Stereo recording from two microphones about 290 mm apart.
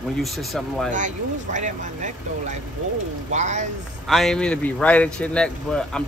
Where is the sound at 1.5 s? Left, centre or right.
Right.